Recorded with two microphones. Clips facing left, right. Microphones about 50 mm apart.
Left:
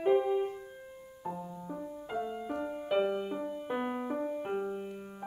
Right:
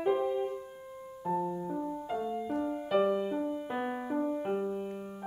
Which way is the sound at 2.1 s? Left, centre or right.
Centre.